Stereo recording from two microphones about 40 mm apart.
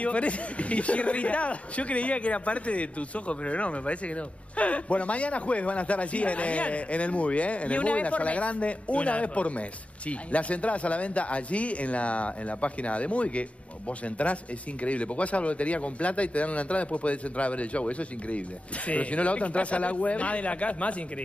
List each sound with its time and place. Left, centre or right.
0.0 s speech: left